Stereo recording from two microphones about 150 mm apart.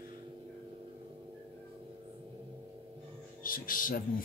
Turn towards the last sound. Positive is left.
turn(degrees=65)  # may be behind; listen again after turning